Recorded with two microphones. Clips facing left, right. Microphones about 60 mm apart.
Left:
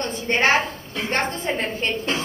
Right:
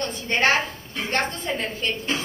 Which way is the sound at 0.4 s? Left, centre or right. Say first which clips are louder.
Left 1 dB; centre.